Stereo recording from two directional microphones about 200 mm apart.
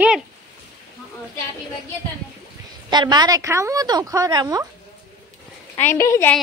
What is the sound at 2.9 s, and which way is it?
A woman's voice, 20° right (ahead or behind).